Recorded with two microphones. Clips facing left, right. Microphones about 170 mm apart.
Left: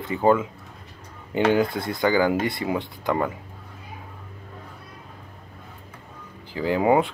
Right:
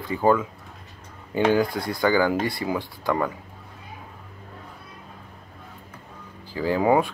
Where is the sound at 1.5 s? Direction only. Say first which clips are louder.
Even; 25° left (ahead or behind).